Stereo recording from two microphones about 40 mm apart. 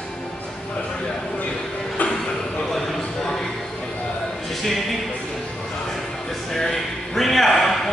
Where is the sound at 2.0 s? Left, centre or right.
Left.